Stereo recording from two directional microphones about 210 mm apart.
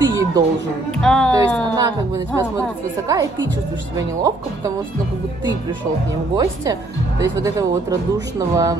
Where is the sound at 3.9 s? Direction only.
15° right (ahead or behind).